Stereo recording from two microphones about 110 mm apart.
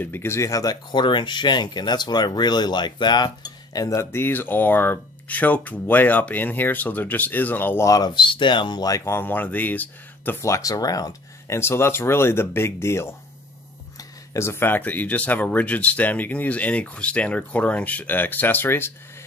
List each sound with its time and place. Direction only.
0.0 s speech: 20° left (ahead or behind)